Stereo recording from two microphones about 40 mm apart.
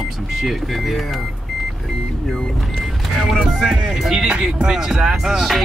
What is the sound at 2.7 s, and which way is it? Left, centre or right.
Vehicle, centre.